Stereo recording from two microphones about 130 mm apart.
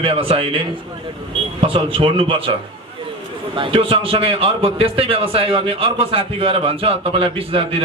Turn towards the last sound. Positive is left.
turn(degrees=-45)  # may be behind; listen again after turning